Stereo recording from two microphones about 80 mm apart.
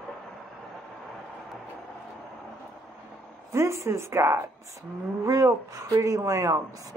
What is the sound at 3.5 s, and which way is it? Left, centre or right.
A woman's voice, right.